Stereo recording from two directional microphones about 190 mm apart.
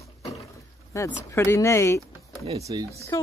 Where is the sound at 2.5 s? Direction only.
15° right (ahead or behind).